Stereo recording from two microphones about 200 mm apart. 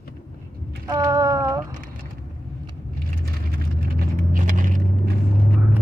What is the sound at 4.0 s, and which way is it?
Vehicle, 45° right (ahead or behind).